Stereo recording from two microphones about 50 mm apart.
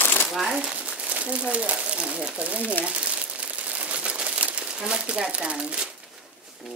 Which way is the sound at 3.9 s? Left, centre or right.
Right.